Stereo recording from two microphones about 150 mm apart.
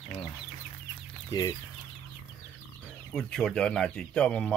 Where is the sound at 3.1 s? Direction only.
5° left (ahead or behind).